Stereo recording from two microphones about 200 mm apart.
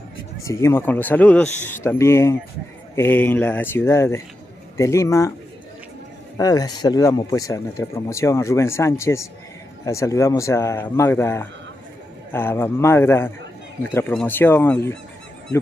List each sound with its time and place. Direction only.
0.4 s speech: 15° left (ahead or behind)
6.3 s speech: 20° left (ahead or behind)